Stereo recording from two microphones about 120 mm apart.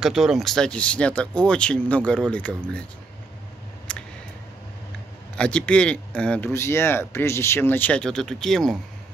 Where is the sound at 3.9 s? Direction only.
10° left (ahead or behind).